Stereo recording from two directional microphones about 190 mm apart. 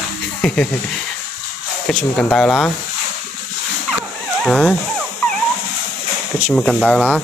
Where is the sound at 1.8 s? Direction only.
5° left (ahead or behind).